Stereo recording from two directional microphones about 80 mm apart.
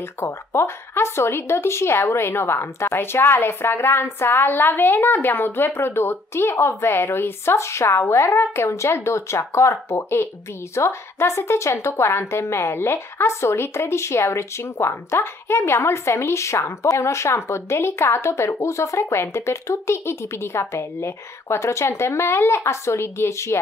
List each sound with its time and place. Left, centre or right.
0.2 s speech: left